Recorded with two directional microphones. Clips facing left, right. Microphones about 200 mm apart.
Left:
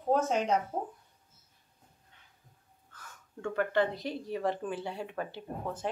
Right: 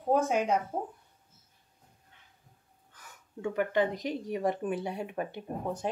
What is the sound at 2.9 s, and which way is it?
Speech, 15° right (ahead or behind).